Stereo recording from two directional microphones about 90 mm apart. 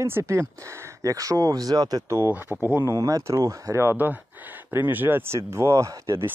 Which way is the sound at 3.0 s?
40° right (ahead or behind).